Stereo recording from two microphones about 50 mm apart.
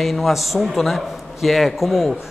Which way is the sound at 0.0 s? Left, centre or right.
Centre.